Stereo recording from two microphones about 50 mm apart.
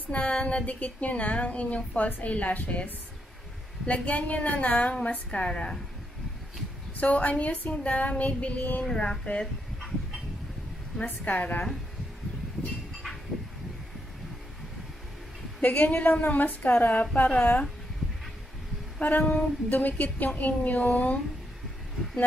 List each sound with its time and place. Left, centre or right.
0.1 s a woman's voice: left
2.0 s a woman's voice: left
2.3 s a woman's voice: left
7.0 s a woman's voice: left
8.8 s speech: centre
11.1 s a woman's voice: left
15.6 s a woman's voice: left
18.9 s a woman's voice: left